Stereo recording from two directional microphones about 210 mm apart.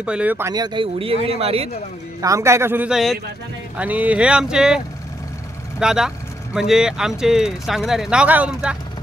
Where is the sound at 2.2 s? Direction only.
15° right (ahead or behind).